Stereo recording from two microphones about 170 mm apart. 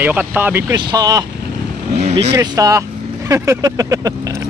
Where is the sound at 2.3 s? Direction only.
20° right (ahead or behind).